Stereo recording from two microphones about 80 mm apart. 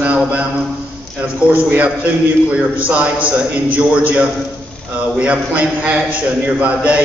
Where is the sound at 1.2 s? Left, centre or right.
Centre.